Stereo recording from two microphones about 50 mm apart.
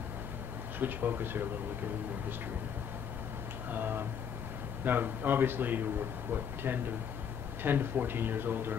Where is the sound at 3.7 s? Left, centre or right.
Right.